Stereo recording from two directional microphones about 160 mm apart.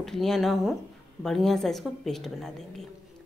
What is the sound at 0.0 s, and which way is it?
Speech, centre (ahead or behind).